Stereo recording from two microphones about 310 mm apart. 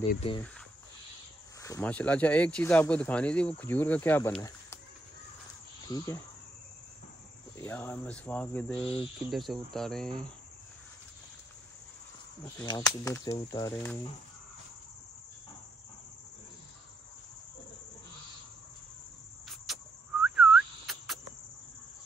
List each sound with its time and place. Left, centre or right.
0.1 s speech: centre
1.6 s speech: centre
5.9 s speech: centre
7.5 s speech: centre
12.5 s speech: centre
19.4 s cricket: centre